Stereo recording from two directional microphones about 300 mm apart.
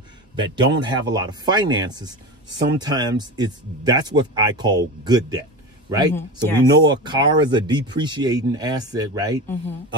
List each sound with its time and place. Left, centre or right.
0.4 s a man's voice: centre
6.1 s speech: centre
6.9 s speech: centre